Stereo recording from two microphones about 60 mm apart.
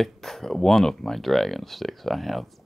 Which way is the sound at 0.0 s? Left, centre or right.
Centre.